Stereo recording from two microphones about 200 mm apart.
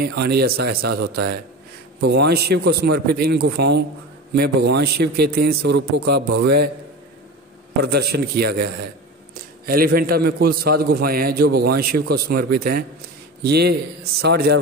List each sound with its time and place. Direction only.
0.0 s a man's voice: 55° right (ahead or behind)
7.8 s a man's voice: 55° right (ahead or behind)